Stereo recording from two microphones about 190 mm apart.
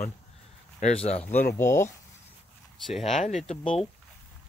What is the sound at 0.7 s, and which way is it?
Speech, 35° left (ahead or behind).